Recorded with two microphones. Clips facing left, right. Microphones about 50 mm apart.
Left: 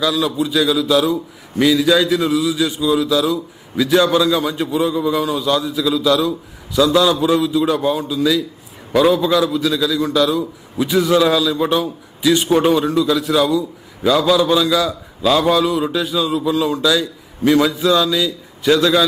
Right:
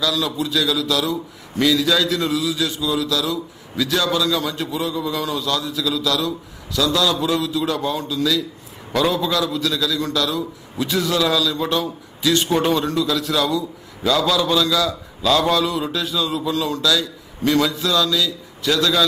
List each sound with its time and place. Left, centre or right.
0.0 s a man's voice: centre